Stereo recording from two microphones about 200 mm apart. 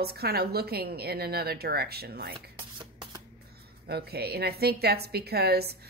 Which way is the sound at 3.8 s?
50° right (ahead or behind).